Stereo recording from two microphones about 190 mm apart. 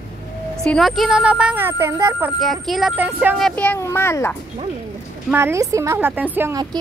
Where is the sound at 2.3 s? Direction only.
Centre (ahead or behind).